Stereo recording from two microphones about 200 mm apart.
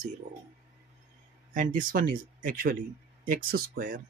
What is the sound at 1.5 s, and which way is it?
Speech, 40° right (ahead or behind).